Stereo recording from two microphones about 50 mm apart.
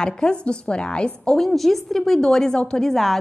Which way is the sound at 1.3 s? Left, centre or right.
Centre.